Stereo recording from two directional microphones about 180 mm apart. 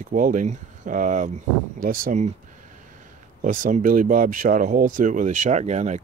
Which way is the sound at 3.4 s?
45° right (ahead or behind).